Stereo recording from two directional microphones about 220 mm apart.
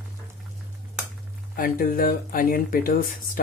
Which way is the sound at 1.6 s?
40° left (ahead or behind).